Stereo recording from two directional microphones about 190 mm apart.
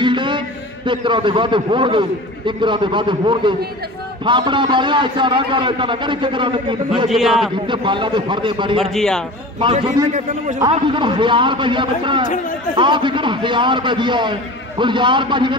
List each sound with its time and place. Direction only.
0.0 s a sound: 25° right (ahead or behind)
0.8 s a man's voice: 25° right (ahead or behind)
7.1 s a man's voice: centre (ahead or behind)
7.6 s a man's voice: 25° right (ahead or behind)
8.9 s a man's voice: centre (ahead or behind)
9.6 s a man's voice: 25° right (ahead or behind)